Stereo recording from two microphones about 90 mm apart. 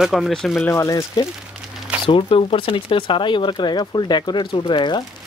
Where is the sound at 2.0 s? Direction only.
80° left; by 5.0 s 55° left (ahead or behind).